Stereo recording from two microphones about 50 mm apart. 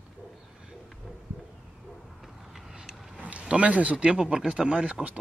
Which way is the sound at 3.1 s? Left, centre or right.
Right.